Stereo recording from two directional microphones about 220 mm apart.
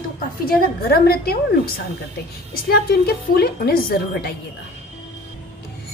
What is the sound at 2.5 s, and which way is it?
A woman's voice, 45° left (ahead or behind).